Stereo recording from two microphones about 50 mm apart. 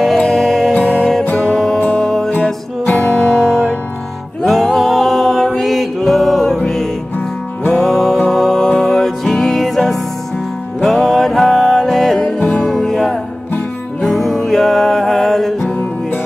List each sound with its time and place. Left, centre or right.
0.0 s music: centre
0.7 s music: left
1.4 s music: centre
2.8 s music: left
3.1 s music: left
4.5 s music: centre
7.7 s music: centre
12.2 s music: left
12.5 s music: centre